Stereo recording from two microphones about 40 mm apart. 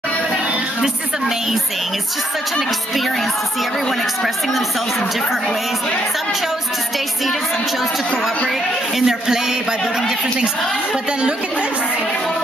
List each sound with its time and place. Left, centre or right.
8.9 s a man's voice: centre
9.7 s a woman's voice: centre